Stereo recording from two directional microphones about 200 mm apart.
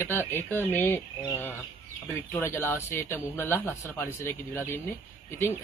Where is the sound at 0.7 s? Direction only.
10° left (ahead or behind).